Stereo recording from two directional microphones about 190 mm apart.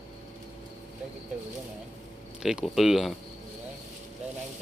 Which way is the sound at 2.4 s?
Centre (ahead or behind).